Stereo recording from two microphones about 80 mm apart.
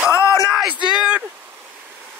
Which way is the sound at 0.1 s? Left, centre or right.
Left.